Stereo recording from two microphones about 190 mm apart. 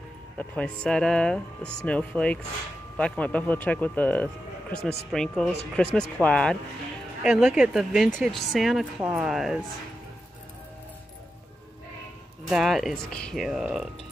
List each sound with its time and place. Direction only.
0.8 s speech: 5° left (ahead or behind)
4.7 s speech: 30° right (ahead or behind)
5.1 s speech: 5° left (ahead or behind)
12.4 s speech: centre (ahead or behind)